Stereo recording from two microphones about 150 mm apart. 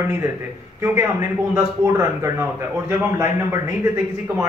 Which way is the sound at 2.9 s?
15° right (ahead or behind).